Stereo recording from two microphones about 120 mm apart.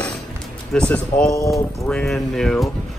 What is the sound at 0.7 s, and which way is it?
A man's voice, 10° left (ahead or behind).